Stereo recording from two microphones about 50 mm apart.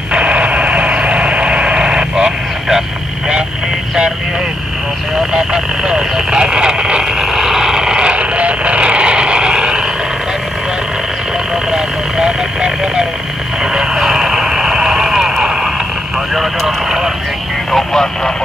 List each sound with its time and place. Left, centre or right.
0.1 s radio: right
5.3 s vehicle: centre
11.7 s vehicle: centre
17.7 s vehicle: centre